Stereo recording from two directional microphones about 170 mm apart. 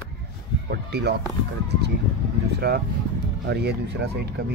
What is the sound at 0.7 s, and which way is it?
Speech, 75° right (ahead or behind).